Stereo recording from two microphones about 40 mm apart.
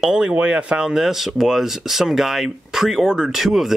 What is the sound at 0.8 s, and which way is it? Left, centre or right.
Speech, centre.